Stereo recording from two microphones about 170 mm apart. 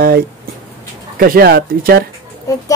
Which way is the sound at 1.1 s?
60° right (ahead or behind).